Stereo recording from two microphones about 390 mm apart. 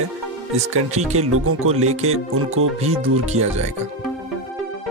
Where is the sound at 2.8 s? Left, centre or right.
Centre.